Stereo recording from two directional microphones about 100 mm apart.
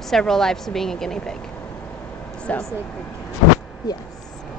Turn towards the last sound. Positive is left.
turn(degrees=40)  # may be behind; listen again after turning